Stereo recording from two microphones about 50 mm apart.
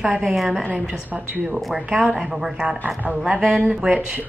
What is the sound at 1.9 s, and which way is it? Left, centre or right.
A woman's voice, right.